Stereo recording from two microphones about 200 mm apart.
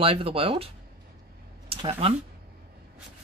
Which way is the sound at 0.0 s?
30° right (ahead or behind).